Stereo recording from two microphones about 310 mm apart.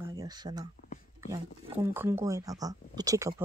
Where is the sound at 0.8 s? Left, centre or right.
Left.